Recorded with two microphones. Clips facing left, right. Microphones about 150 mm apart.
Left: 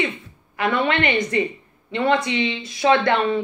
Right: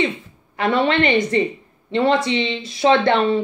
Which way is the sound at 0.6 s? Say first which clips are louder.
Right 3 dB; 30° right (ahead or behind).